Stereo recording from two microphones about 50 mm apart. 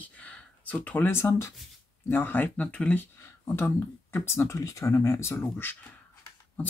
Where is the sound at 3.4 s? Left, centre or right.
Left.